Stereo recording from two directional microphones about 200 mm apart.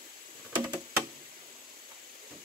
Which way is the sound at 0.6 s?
15° right (ahead or behind).